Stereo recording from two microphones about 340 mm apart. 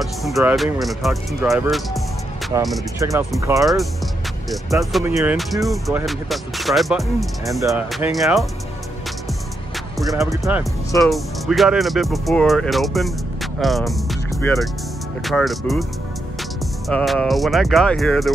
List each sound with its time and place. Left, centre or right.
0.0 s speech: centre
9.9 s speech: centre
16.8 s speech: centre